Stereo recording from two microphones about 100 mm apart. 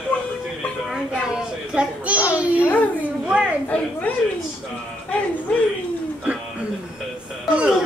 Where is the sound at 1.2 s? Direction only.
10° right (ahead or behind).